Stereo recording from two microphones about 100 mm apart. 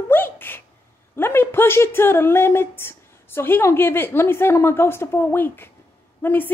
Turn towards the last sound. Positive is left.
turn(degrees=20)  # may be behind; listen again after turning